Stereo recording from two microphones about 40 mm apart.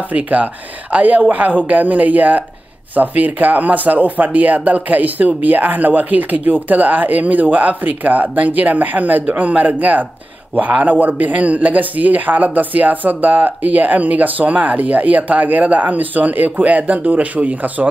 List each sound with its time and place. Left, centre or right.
0.1 s a man's voice: right